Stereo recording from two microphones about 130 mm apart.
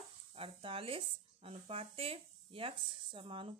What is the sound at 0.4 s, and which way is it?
Speech, 45° right (ahead or behind).